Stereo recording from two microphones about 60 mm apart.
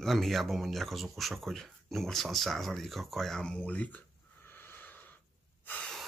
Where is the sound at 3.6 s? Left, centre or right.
Left.